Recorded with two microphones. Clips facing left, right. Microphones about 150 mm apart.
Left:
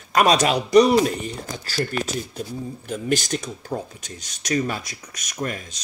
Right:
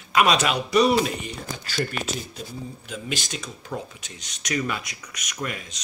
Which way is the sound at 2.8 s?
45° left (ahead or behind).